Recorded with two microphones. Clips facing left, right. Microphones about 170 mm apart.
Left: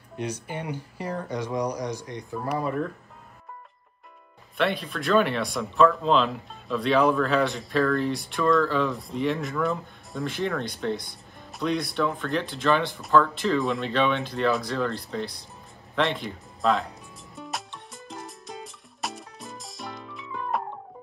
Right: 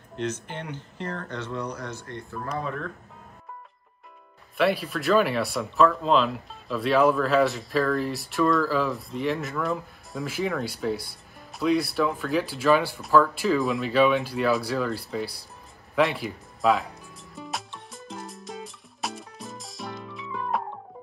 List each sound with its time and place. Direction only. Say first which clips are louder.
0.1 s speech: right 1 dB; 10° left (ahead or behind)
4.6 s speech: right 2 dB; 5° right (ahead or behind)
17.4 s music: right 1 dB; centre (ahead or behind)